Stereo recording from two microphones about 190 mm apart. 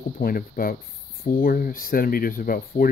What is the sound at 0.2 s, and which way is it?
Speech, 50° left (ahead or behind).